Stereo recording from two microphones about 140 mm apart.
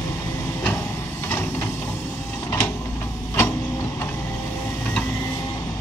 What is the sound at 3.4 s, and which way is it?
Vehicle, 15° left (ahead or behind).